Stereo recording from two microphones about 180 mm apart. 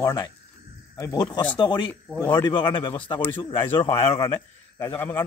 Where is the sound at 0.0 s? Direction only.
20° left (ahead or behind).